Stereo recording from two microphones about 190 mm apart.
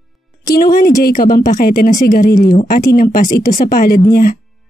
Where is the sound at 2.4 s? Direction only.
25° left (ahead or behind).